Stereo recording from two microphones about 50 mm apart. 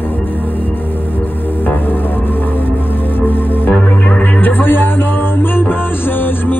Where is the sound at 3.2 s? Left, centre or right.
Left.